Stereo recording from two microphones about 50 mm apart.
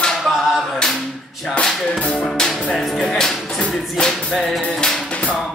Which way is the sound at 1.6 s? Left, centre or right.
Centre.